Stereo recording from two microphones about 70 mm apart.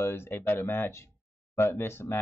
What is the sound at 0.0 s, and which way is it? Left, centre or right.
Speech, left.